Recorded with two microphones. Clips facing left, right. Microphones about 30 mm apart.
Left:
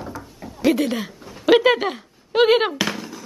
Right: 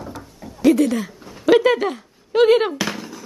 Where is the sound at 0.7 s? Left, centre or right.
Left.